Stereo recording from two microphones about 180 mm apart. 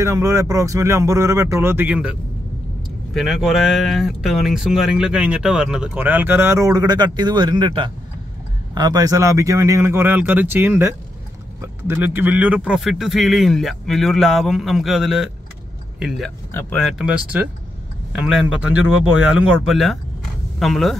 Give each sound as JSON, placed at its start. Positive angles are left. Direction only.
{"t": 0.0, "sound": "speech", "side_deg": -15}
{"t": 3.2, "sound": "speech", "side_deg": 0}
{"t": 11.9, "sound": "speech", "side_deg": -10}
{"t": 17.0, "sound": "speech", "side_deg": -5}